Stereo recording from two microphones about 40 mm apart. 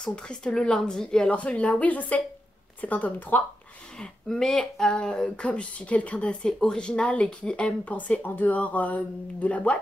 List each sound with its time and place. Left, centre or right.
0.0 s a woman's voice: left
1.3 s speech: left
4.3 s a woman's voice: centre
5.2 s speech: left
7.9 s speech: left